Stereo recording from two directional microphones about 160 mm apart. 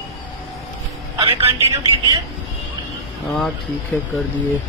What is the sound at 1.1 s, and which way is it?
A man's voice, 30° right (ahead or behind).